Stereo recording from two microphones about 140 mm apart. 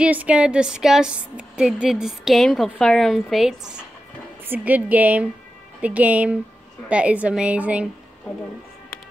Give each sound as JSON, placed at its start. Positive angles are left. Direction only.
{"t": 0.0, "sound": "a woman's voice", "side_deg": -10}